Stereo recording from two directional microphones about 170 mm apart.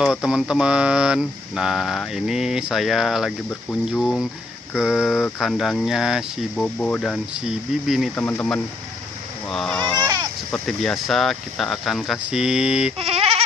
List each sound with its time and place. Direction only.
0.0 s speech: 5° right (ahead or behind)
6.6 s speech: 5° left (ahead or behind)
8.2 s speech: 15° left (ahead or behind); by 12.9 s 5° right (ahead or behind)
12.9 s a sound: 35° right (ahead or behind)